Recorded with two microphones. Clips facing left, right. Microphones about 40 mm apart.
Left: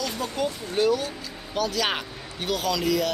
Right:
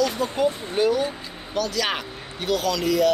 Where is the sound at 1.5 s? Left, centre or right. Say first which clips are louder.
Right 1 dB; centre.